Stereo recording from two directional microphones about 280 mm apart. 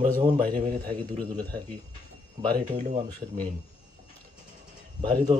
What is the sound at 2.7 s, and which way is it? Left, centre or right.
Speech, right.